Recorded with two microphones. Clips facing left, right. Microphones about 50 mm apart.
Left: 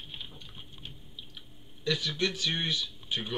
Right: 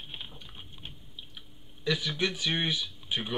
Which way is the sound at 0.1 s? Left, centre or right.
Centre.